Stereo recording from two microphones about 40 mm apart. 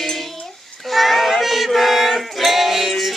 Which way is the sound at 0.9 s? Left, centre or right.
Centre.